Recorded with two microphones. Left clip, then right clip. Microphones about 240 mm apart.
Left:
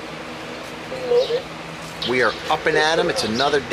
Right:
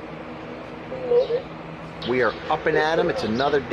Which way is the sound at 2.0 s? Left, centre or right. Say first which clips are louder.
Left 3 dB; centre.